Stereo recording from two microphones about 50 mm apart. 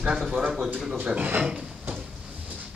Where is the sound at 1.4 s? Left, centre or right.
Centre.